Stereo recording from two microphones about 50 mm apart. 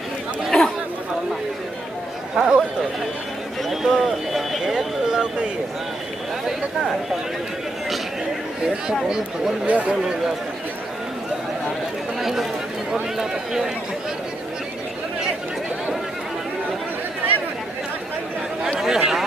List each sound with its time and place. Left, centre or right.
0.5 s chatter: centre
2.3 s speech: centre
3.7 s speech: centre
9.0 s speech: centre
9.7 s speech: right
12.2 s chatter: centre
13.2 s speech: centre
18.8 s a sound: centre